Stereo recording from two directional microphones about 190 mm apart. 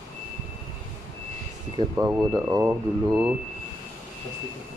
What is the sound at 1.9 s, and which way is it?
Speech, 15° right (ahead or behind).